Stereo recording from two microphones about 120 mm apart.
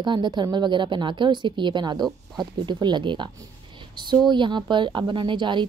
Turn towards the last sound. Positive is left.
turn(degrees=-40)  # may be behind; listen again after turning